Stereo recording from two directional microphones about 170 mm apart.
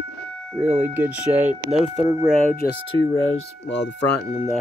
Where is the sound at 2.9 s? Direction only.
20° left (ahead or behind).